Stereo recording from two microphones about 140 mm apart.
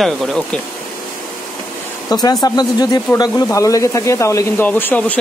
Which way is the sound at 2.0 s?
30° left (ahead or behind).